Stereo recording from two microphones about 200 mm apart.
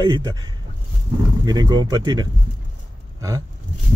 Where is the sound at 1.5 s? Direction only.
20° right (ahead or behind).